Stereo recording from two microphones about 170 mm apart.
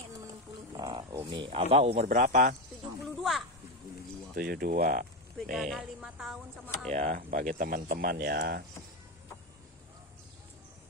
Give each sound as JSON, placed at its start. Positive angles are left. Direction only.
{"t": 0.7, "sound": "a sound", "side_deg": -25}
{"t": 1.2, "sound": "speech", "side_deg": -30}
{"t": 3.0, "sound": "a sound", "side_deg": 0}
{"t": 4.4, "sound": "speech", "side_deg": -60}
{"t": 5.5, "sound": "speech", "side_deg": 0}
{"t": 6.9, "sound": "speech", "side_deg": -50}